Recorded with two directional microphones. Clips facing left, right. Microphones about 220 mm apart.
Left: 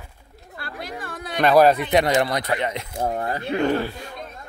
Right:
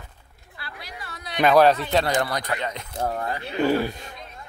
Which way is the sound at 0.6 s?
50° left (ahead or behind).